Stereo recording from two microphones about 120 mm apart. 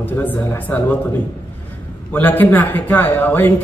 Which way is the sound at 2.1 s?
15° left (ahead or behind).